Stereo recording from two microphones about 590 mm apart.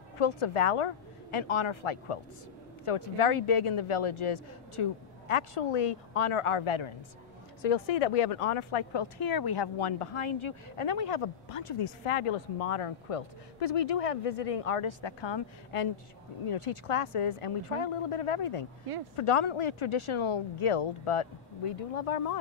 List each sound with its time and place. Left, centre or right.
0.2 s speech: left
7.6 s speech: left
9.2 s speech: left
9.8 s speech: left
15.7 s speech: left